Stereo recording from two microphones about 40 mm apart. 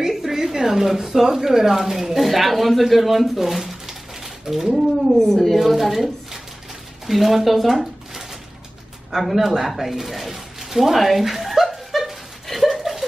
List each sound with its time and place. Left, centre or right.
0.2 s speech: centre
5.1 s a woman's voice: centre
5.7 s a woman's voice: centre
9.1 s a sound: centre